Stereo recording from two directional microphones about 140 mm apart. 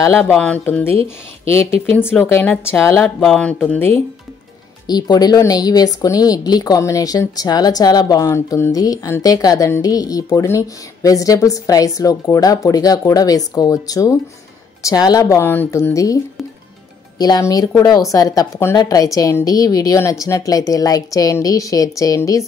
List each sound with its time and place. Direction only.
0.0 s speech: 15° left (ahead or behind)
2.7 s speech: 20° left (ahead or behind)
3.2 s speech: 5° left (ahead or behind)
4.8 s speech: 30° left (ahead or behind)
17.2 s speech: 25° left (ahead or behind)